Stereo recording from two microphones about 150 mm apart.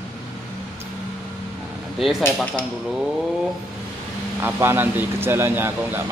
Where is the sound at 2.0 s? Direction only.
Centre (ahead or behind).